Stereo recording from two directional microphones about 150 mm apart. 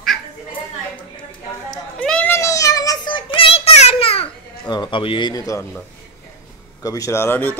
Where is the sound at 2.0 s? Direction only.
5° left (ahead or behind).